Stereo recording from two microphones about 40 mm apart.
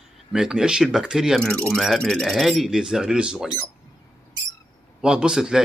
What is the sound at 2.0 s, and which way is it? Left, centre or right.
Speech, centre.